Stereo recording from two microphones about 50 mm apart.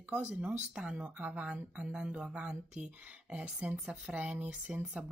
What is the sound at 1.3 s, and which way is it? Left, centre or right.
Speech, right.